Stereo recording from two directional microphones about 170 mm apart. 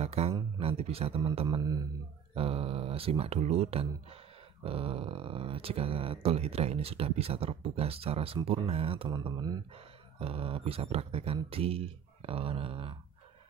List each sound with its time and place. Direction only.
0.0 s speech: 40° right (ahead or behind)
2.3 s speech: 35° right (ahead or behind)